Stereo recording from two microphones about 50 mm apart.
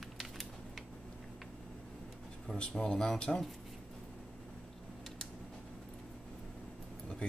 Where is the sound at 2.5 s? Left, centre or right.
Centre.